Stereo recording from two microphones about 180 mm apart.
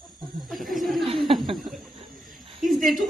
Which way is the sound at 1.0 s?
30° right (ahead or behind).